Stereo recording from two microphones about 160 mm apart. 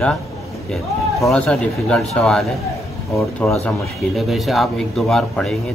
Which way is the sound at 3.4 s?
15° left (ahead or behind).